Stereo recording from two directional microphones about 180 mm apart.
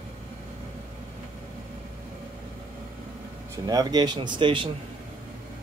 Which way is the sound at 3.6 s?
20° right (ahead or behind).